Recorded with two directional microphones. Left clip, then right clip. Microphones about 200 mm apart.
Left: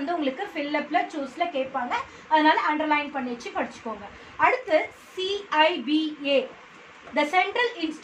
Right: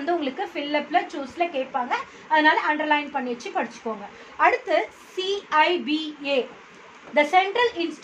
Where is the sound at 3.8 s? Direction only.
40° right (ahead or behind).